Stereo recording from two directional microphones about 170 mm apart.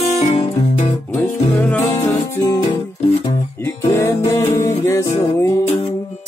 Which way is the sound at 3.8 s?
15° left (ahead or behind).